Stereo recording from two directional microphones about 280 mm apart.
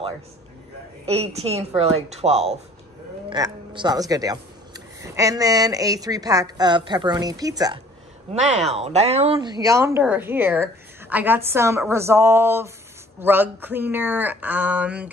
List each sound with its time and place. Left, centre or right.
1.0 s speech: right
8.3 s speech: right; by 15.0 s centre